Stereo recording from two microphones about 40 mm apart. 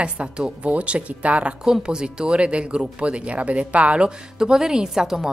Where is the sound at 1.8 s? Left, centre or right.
Right.